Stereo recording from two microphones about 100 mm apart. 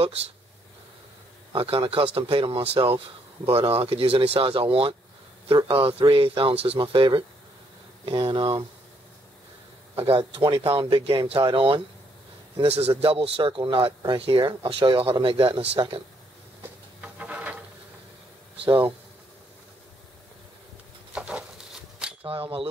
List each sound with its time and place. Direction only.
1.5 s speech: 65° right (ahead or behind)
9.9 s speech: 75° right (ahead or behind); by 11.8 s 55° right (ahead or behind)
12.6 s a man's voice: 90° right
13.0 s speech: 70° right (ahead or behind)
17.0 s a sound: 15° right (ahead or behind)
21.1 s a sound: 10° right (ahead or behind)
22.2 s speech: 65° right (ahead or behind)